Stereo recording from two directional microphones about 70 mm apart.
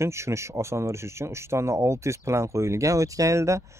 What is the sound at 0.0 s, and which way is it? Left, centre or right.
Speech, right.